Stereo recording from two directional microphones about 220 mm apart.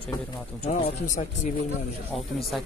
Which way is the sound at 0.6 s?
30° left (ahead or behind).